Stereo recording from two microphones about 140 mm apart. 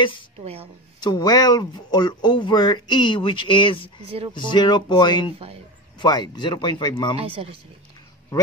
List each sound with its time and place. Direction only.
0.4 s a woman's voice: 45° right (ahead or behind)
1.0 s speech: 30° left (ahead or behind)
7.2 s speech: 40° right (ahead or behind)